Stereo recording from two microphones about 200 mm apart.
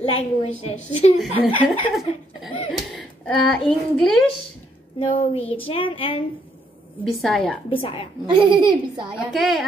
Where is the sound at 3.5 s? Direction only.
5° left (ahead or behind).